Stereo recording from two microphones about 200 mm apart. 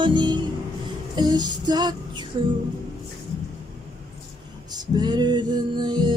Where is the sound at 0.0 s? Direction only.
25° right (ahead or behind).